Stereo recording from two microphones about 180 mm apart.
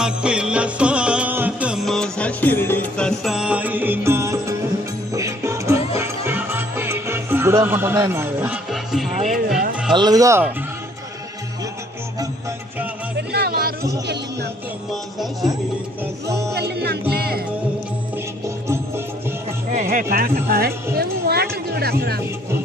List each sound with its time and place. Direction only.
0.0 s music: 5° right (ahead or behind)
9.1 s music: 40° right (ahead or behind)
9.9 s speech: 20° right (ahead or behind)
13.3 s music: 60° right (ahead or behind)
16.3 s music: 15° right (ahead or behind)
16.5 s music: 65° right (ahead or behind)
18.7 s music: 15° right (ahead or behind)
19.7 s music: 45° right (ahead or behind)